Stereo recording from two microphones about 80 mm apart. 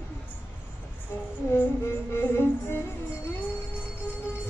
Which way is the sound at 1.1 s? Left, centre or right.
Left.